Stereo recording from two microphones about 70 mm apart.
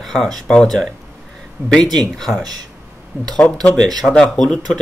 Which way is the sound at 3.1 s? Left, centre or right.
Right.